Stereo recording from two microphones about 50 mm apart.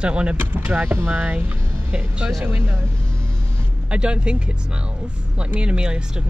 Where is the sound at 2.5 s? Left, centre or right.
Right.